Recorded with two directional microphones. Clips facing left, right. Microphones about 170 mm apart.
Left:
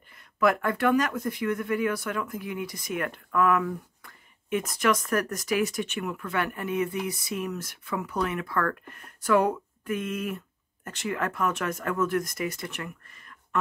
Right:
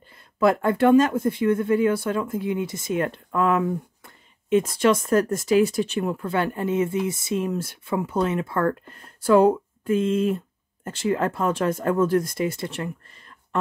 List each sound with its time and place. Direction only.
0.4 s speech: 30° right (ahead or behind)